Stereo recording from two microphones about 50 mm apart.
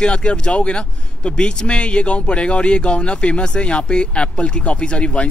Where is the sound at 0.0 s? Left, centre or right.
Centre.